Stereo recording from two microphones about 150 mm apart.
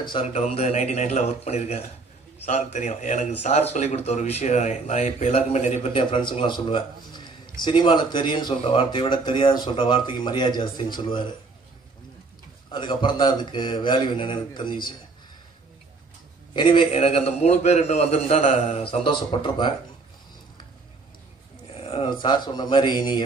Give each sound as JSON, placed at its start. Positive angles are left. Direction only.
{"t": 0.0, "sound": "speech", "side_deg": 35}
{"t": 0.3, "sound": "a man's voice", "side_deg": 45}
{"t": 12.7, "sound": "speech", "side_deg": 30}
{"t": 16.5, "sound": "a man's voice", "side_deg": 35}
{"t": 21.7, "sound": "speech", "side_deg": 40}